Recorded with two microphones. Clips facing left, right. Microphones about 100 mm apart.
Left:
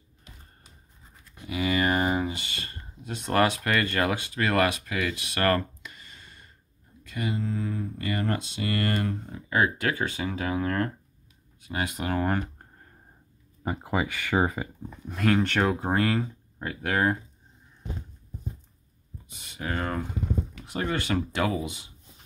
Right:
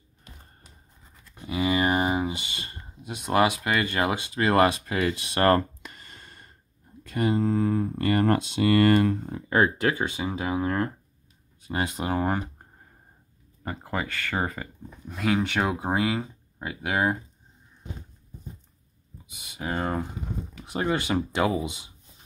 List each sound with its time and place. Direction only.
1.3 s speech: 30° right (ahead or behind)
5.8 s a sound: 45° right (ahead or behind)
7.0 s speech: 45° right (ahead or behind); by 9.4 s 60° right (ahead or behind)
9.5 s speech: 30° right (ahead or behind)
11.6 s speech: 30° right (ahead or behind)
13.7 s speech: 10° left (ahead or behind)
15.0 s speech: 5° right (ahead or behind)
19.2 s speech: 10° right (ahead or behind)
19.6 s speech: 20° right (ahead or behind)